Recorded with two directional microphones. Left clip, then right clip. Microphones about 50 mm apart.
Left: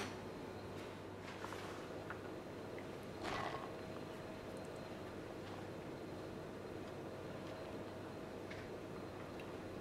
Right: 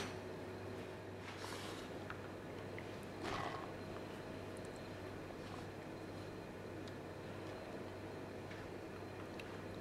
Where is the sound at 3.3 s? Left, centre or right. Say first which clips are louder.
Even; centre.